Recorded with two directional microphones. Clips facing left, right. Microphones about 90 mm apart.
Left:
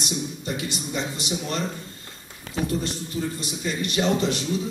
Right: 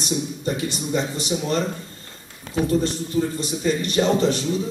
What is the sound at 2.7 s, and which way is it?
A man's voice, 35° right (ahead or behind).